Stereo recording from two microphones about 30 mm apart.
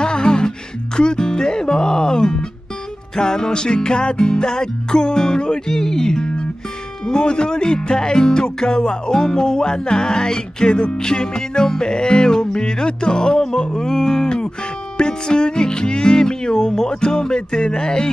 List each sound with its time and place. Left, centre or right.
0.0 s music: left
0.9 s speech: left
13.7 s music: left
15.0 s speech: left